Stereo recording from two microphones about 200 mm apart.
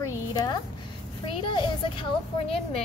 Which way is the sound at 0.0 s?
20° left (ahead or behind).